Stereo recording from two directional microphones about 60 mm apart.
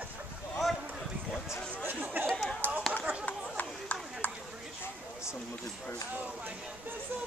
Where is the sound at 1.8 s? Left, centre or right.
Right.